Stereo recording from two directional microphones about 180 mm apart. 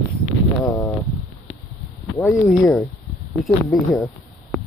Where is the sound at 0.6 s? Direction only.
15° left (ahead or behind).